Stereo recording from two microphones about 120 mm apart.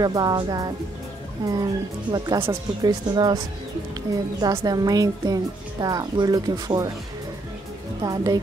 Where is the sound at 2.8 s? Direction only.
35° right (ahead or behind).